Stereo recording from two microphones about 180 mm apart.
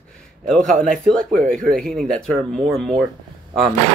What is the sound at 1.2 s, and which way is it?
Speech, 50° right (ahead or behind).